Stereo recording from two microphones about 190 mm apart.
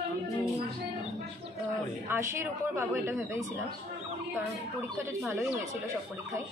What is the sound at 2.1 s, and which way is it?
A man's voice, 15° right (ahead or behind).